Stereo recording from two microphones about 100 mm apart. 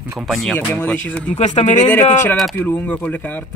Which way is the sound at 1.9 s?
20° left (ahead or behind).